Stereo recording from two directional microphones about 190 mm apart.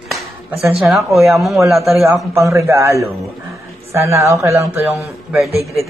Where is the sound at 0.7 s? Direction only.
Centre (ahead or behind).